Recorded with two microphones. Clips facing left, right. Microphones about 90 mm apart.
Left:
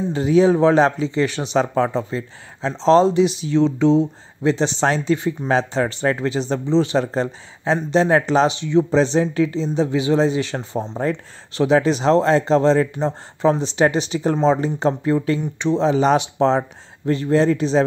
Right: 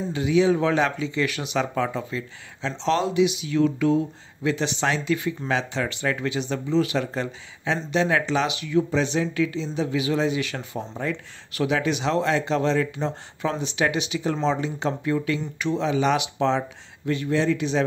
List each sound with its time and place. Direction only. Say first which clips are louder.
0.1 s speech: left 5 dB; 40° left (ahead or behind)